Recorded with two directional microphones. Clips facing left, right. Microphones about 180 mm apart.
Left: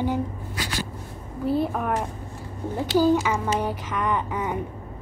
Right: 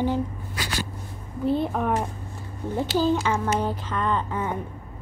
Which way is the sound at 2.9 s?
10° left (ahead or behind).